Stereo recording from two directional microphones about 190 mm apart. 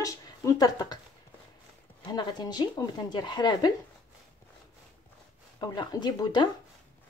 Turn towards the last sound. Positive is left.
turn(degrees=20)  # may be behind; listen again after turning